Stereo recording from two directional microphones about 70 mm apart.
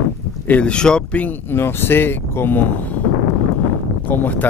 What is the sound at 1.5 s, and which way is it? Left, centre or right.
Speech, left.